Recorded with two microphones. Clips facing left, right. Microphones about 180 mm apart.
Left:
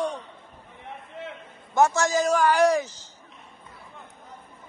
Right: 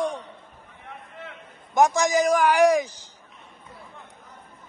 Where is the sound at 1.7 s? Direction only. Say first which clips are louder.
Right 1 dB; 15° right (ahead or behind).